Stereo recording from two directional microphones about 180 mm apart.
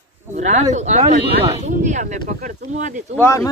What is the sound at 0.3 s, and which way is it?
Speech, 40° right (ahead or behind).